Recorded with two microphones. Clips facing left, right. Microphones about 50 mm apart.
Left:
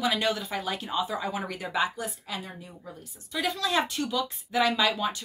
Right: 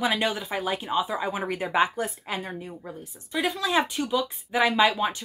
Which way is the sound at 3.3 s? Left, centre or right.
Centre.